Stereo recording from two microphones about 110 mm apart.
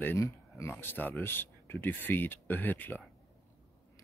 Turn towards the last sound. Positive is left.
turn(degrees=15)  # may be behind; listen again after turning